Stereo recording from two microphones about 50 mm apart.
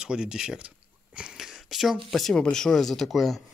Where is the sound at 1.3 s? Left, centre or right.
Centre.